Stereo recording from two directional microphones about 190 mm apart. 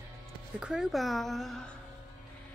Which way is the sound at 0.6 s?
Centre (ahead or behind).